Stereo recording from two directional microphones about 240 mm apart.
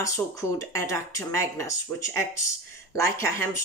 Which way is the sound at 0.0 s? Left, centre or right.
Centre.